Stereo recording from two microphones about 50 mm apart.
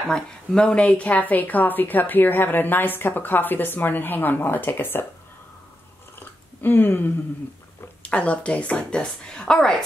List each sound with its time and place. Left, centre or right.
0.1 s speech: centre; by 5.0 s left
6.1 s chewing: left
8.0 s a woman's voice: left